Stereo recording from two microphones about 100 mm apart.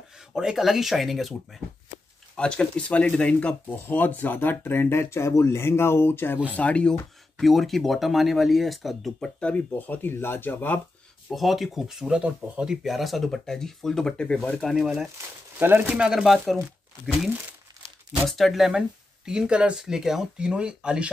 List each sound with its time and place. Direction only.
0.3 s speech: 5° right (ahead or behind)
2.3 s speech: 10° left (ahead or behind)
9.4 s speech: 15° left (ahead or behind)
11.2 s speech: centre (ahead or behind)
14.7 s speech: 5° right (ahead or behind)
15.6 s speech: 15° right (ahead or behind)
18.2 s speech: centre (ahead or behind)